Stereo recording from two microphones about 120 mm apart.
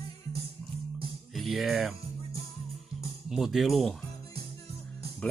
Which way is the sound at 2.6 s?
Centre (ahead or behind).